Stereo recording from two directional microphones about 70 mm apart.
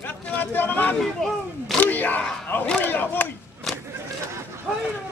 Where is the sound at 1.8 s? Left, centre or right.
Left.